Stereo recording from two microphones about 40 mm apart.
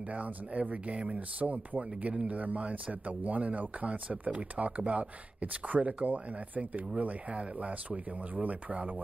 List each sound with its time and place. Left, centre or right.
0.1 s speech: right